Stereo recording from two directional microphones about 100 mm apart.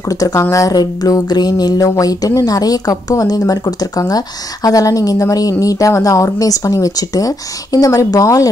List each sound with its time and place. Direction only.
0.1 s speech: 35° left (ahead or behind)